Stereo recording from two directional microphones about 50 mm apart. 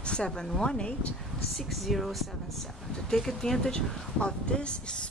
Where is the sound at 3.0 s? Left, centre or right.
Centre.